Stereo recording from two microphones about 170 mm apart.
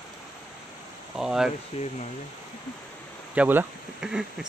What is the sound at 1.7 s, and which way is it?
Speech, 40° left (ahead or behind).